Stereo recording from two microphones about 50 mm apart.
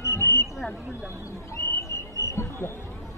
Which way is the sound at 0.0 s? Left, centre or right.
Left.